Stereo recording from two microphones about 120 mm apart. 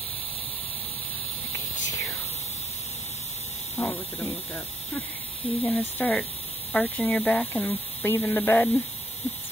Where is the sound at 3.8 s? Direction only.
15° left (ahead or behind).